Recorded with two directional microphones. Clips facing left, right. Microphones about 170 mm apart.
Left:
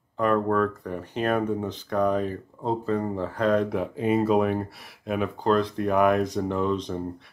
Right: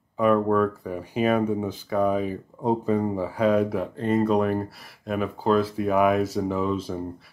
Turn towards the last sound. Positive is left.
turn(degrees=-5)  # may be behind; listen again after turning